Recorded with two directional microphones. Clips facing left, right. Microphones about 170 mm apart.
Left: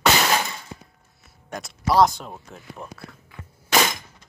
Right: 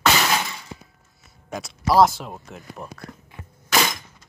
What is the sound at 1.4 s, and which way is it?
Speech, centre (ahead or behind).